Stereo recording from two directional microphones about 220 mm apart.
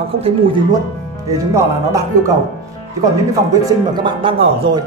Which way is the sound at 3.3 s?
15° right (ahead or behind).